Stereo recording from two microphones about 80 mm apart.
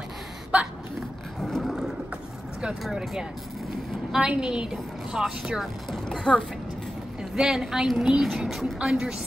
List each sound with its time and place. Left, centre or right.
0.5 s speech: centre
1.4 s a sound: centre
2.8 s speech: centre
6.0 s speech: centre
7.3 s speech: centre